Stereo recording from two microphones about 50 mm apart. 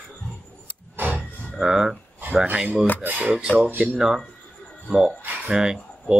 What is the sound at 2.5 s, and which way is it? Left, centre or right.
Cutlery, centre.